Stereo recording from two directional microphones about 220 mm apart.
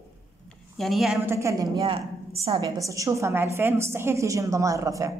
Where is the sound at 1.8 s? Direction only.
25° right (ahead or behind).